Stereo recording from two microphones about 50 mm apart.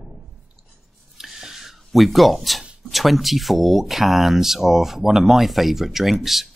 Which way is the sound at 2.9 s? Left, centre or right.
Centre.